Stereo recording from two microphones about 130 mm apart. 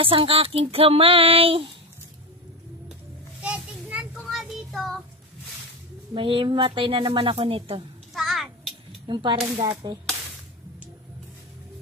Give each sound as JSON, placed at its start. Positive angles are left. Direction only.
{"t": 0.0, "sound": "a woman's voice", "side_deg": -45}
{"t": 3.4, "sound": "child singing", "side_deg": -10}
{"t": 6.1, "sound": "a woman's voice", "side_deg": -40}
{"t": 8.1, "sound": "a sound", "side_deg": 0}
{"t": 9.0, "sound": "speech", "side_deg": -35}